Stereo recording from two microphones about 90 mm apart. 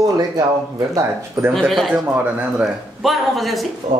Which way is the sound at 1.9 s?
15° right (ahead or behind).